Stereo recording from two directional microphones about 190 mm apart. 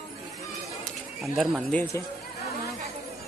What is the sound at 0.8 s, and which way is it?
Chatter, centre (ahead or behind).